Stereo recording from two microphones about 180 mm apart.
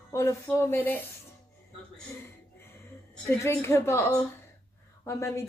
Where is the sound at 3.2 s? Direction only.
15° left (ahead or behind).